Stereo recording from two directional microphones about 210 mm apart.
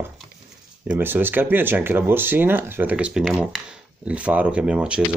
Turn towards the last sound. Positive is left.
turn(degrees=-5)  # may be behind; listen again after turning